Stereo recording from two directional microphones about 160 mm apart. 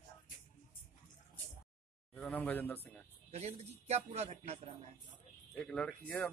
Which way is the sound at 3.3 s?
40° right (ahead or behind).